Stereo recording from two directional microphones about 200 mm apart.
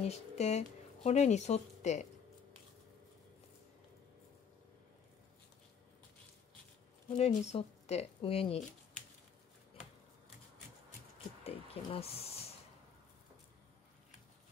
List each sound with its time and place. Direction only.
0.0 s speech: 35° left (ahead or behind)
7.1 s speech: 30° left (ahead or behind)
11.4 s a sound: 30° left (ahead or behind)